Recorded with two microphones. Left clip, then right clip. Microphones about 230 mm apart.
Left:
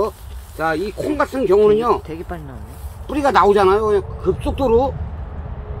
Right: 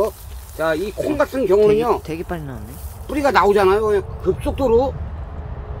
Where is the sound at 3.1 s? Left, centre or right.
Centre.